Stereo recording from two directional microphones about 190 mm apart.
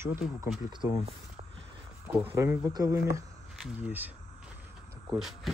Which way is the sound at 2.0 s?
10° right (ahead or behind).